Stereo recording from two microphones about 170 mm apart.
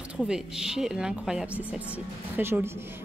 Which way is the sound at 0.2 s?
5° right (ahead or behind).